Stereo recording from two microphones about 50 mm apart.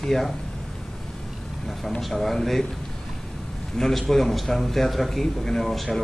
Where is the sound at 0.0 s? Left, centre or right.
Centre.